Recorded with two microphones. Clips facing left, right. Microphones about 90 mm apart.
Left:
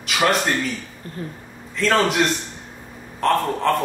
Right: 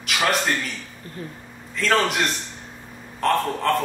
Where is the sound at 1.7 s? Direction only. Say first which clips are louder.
Left 2 dB; centre (ahead or behind).